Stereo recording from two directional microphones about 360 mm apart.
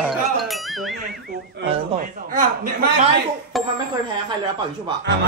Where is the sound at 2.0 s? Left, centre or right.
Right.